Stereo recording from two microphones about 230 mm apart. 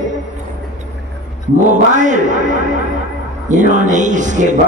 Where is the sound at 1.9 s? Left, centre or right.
Right.